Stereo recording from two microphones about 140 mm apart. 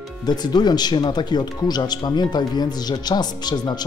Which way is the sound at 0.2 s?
30° left (ahead or behind).